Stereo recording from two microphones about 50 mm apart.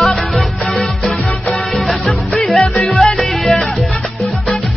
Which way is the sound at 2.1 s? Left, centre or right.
Centre.